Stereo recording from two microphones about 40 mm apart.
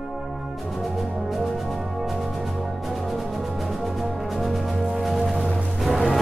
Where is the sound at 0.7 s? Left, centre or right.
Centre.